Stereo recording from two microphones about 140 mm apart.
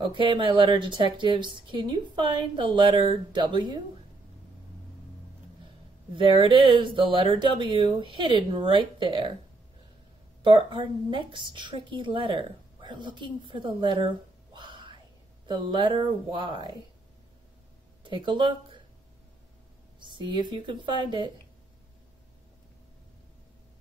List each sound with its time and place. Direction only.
0.0 s a woman's voice: 35° right (ahead or behind)
6.1 s a woman's voice: 35° right (ahead or behind)
10.4 s a woman's voice: 35° right (ahead or behind)
18.0 s speech: 35° right (ahead or behind)
20.1 s a woman's voice: 35° right (ahead or behind)